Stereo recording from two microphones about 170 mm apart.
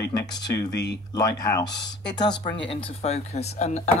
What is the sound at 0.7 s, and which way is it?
Speech, 85° left.